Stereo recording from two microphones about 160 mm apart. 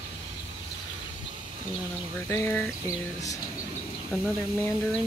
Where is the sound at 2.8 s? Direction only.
20° left (ahead or behind).